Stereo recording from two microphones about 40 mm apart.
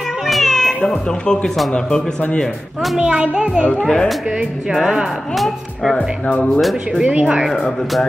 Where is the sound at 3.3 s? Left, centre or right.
Right.